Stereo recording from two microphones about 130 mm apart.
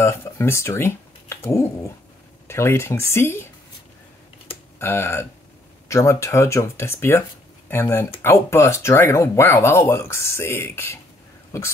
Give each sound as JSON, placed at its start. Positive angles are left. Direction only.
{"t": 0.0, "sound": "speech", "side_deg": 20}
{"t": 4.7, "sound": "speech", "side_deg": 20}